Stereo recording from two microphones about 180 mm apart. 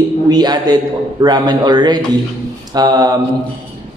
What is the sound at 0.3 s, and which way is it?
A woman's voice, 20° right (ahead or behind).